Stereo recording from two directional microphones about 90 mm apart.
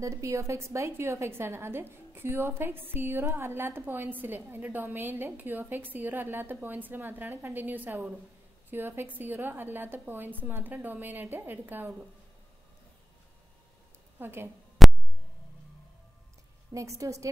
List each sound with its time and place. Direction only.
0.0 s a woman's voice: 35° right (ahead or behind); by 11.9 s 20° right (ahead or behind)
14.2 s a woman's voice: 25° right (ahead or behind)
14.8 s a sound: centre (ahead or behind)
16.7 s a woman's voice: 35° right (ahead or behind)